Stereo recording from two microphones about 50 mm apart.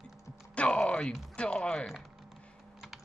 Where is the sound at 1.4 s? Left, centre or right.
Centre.